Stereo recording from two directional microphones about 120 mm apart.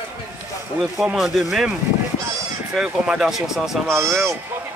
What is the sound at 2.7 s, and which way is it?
Speech, 5° right (ahead or behind).